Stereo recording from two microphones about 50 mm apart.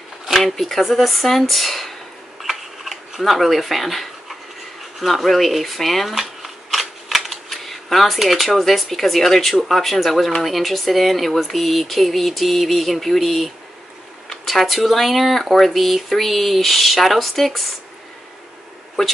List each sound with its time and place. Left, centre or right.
0.3 s speech: centre
2.4 s a sound: centre
7.4 s speech: centre